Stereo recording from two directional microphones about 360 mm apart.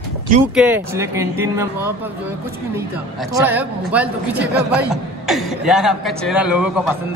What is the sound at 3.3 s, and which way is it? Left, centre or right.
Speech, centre.